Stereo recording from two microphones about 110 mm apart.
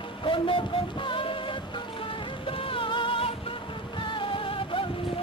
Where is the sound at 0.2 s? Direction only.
50° left (ahead or behind).